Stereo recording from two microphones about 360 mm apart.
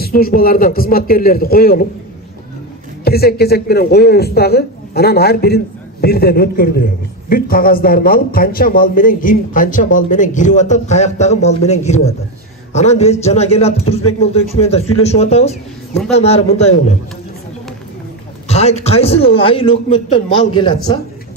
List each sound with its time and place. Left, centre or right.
0.0 s a man's voice: left
3.0 s a man's voice: left
18.5 s a man's voice: centre